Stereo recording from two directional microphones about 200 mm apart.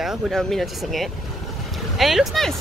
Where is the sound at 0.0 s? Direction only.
Centre (ahead or behind).